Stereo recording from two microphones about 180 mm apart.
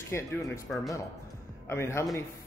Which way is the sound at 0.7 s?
5° left (ahead or behind).